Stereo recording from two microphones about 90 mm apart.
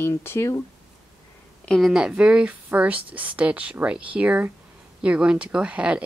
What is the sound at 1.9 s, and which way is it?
Speech, 10° right (ahead or behind).